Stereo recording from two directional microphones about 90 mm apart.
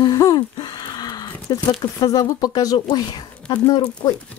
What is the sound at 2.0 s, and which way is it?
A woman's voice, 45° left (ahead or behind).